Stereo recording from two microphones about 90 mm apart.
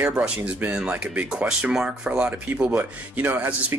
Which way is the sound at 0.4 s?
20° right (ahead or behind).